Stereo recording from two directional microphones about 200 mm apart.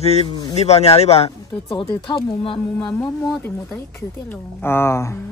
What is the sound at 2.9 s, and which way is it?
Speech, 10° left (ahead or behind).